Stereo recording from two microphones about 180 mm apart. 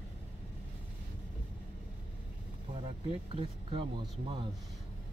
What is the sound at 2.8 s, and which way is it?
Speech, 30° right (ahead or behind).